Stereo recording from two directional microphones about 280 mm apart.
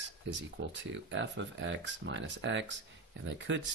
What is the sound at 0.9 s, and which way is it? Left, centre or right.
Speech, right.